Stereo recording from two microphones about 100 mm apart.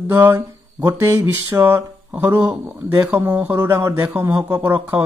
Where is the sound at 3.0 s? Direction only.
20° right (ahead or behind).